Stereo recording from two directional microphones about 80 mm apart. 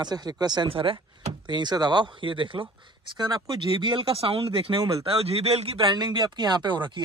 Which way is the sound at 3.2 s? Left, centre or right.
Right.